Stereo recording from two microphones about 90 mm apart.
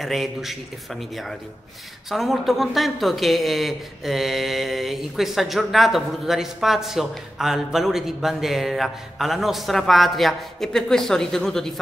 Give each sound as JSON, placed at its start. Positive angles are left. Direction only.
{"t": 0.0, "sound": "speech", "side_deg": 0}
{"t": 2.0, "sound": "speech", "side_deg": 0}